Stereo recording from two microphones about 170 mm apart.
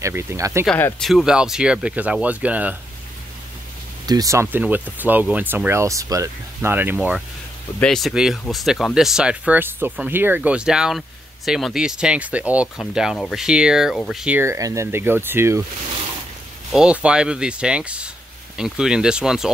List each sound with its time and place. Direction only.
0.0 s speech: 15° right (ahead or behind)
0.7 s speech: 10° left (ahead or behind)
1.0 s speech: 5° right (ahead or behind)
4.0 s speech: 20° right (ahead or behind)
16.7 s speech: 5° right (ahead or behind)